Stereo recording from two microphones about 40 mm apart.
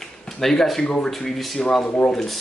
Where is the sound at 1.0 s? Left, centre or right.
Centre.